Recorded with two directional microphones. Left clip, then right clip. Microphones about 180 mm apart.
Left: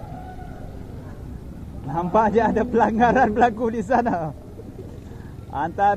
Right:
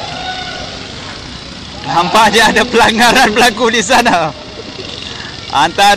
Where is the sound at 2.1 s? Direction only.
5° right (ahead or behind).